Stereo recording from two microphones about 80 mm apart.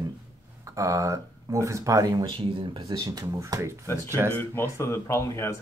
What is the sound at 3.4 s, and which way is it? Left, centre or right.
Speech, right.